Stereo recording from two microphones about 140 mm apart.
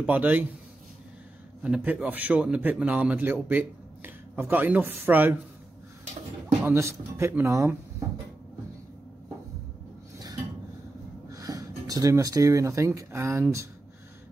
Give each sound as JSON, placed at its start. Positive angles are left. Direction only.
{"t": 0.0, "sound": "a man's voice", "side_deg": -10}
{"t": 1.6, "sound": "a man's voice", "side_deg": -10}
{"t": 6.6, "sound": "speech", "side_deg": -20}
{"t": 11.2, "sound": "speech", "side_deg": -25}